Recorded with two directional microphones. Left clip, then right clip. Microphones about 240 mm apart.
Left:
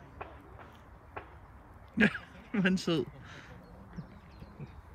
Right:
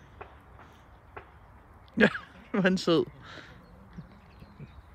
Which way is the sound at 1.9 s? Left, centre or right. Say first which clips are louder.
Right 5 dB; centre.